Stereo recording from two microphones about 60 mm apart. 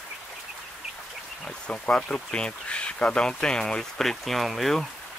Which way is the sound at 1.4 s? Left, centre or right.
Centre.